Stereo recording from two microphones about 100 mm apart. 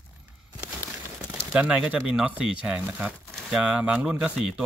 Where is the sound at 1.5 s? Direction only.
10° right (ahead or behind).